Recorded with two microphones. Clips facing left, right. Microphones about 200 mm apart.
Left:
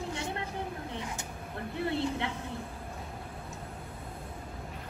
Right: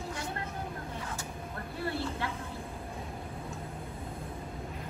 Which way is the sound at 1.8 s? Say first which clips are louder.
Left 3 dB; 20° left (ahead or behind).